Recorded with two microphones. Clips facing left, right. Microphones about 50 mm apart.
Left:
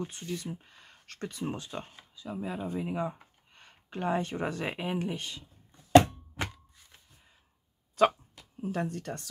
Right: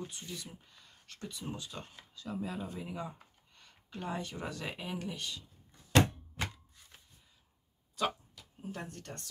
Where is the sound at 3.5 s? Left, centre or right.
Left.